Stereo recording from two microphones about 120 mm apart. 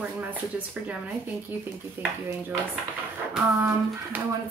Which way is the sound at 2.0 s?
15° right (ahead or behind).